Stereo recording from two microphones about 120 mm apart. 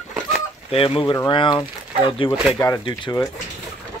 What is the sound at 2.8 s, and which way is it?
Speech, 40° left (ahead or behind).